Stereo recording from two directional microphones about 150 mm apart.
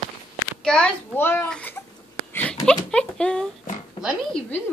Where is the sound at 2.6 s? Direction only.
5° left (ahead or behind).